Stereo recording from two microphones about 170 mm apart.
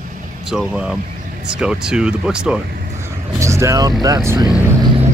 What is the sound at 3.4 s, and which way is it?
Speech, 15° right (ahead or behind).